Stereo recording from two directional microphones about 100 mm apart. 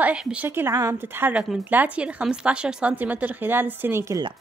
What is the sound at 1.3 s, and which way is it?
A woman's voice, 10° right (ahead or behind).